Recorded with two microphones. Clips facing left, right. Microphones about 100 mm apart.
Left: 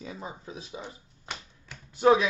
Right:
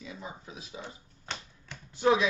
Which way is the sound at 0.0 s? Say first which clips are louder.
Left 3 dB; 35° left (ahead or behind).